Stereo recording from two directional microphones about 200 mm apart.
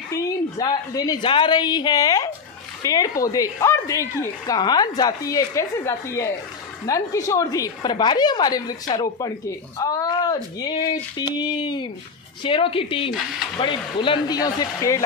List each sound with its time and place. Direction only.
0.1 s a woman's voice: 20° left (ahead or behind)